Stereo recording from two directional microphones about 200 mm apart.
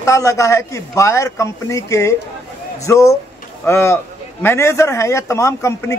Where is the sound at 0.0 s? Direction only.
15° left (ahead or behind).